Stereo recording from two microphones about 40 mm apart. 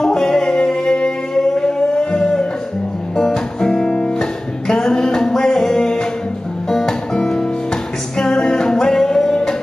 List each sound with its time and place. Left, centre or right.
0.0 s music: centre
4.2 s music: centre